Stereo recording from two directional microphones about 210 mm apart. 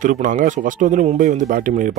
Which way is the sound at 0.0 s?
40° right (ahead or behind).